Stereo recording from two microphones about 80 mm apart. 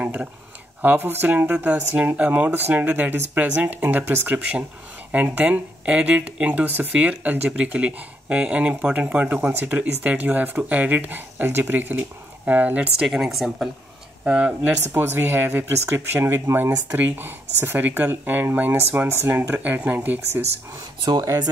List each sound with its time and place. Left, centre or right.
0.0 s speech: centre
13.0 s speech: centre
14.2 s speech: centre
19.5 s speech: centre
21.1 s speech: right